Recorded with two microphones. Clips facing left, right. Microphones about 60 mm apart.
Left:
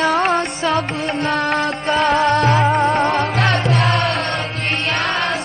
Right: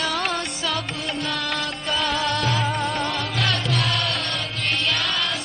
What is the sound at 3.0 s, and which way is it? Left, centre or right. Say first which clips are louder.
Music: left 8 dB; left.